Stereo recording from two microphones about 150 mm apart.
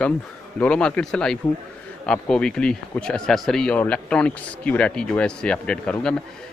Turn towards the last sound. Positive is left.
turn(degrees=5)  # may be behind; listen again after turning